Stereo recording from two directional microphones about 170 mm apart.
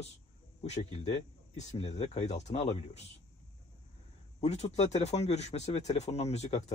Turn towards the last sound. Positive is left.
turn(degrees=40)  # may be behind; listen again after turning